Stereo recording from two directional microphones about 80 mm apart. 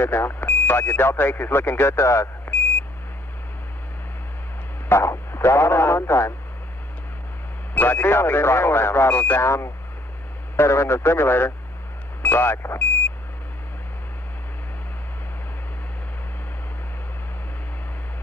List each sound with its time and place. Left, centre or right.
0.0 s speech: left
4.8 s speech: left
7.7 s speech: left
10.5 s speech: left